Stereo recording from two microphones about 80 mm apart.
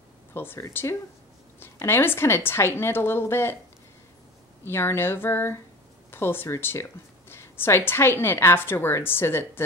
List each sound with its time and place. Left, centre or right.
0.3 s a woman's voice: left
4.6 s a woman's voice: left